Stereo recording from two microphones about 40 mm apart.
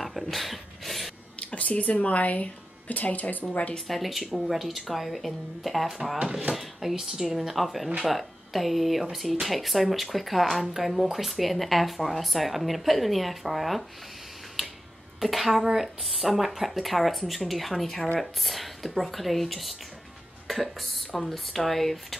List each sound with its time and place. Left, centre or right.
0.0 s dog: centre
1.4 s speech: left
3.8 s speech: centre
15.1 s speech: centre
20.4 s cough: centre
21.3 s speech: centre